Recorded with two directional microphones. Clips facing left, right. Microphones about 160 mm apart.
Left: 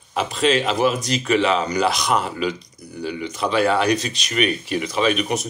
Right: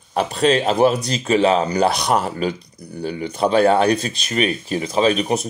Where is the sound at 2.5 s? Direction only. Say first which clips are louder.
Right 2 dB; 55° right (ahead or behind).